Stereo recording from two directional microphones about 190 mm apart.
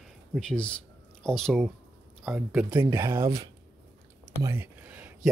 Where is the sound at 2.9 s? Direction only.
15° right (ahead or behind).